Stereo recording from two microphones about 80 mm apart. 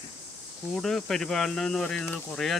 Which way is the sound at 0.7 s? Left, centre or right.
Centre.